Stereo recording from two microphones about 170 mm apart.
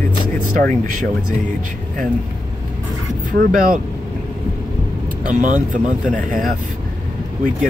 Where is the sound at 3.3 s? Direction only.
55° right (ahead or behind).